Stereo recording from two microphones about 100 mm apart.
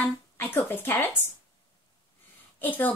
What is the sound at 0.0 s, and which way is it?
Speech, 20° left (ahead or behind).